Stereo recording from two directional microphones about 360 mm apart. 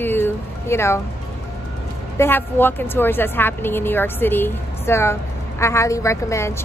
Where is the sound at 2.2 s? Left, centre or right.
Centre.